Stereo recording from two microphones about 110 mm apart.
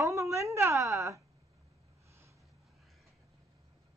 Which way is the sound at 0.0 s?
25° right (ahead or behind).